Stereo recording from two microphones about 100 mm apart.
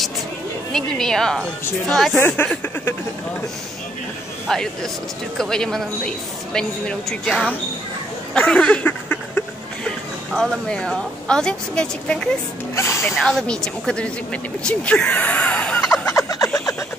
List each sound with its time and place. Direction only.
0.7 s a woman's voice: 5° left (ahead or behind)
2.1 s speech: 20° left (ahead or behind)
4.5 s a woman's voice: 5° left (ahead or behind)
8.5 s a sound: 10° left (ahead or behind)
9.8 s a woman's voice: 5° left (ahead or behind)
12.7 s speech: 30° left (ahead or behind)
13.1 s speech: 5° left (ahead or behind)
16.1 s a sound: 35° left (ahead or behind)